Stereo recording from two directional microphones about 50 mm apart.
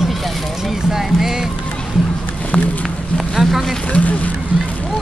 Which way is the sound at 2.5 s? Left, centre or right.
Centre.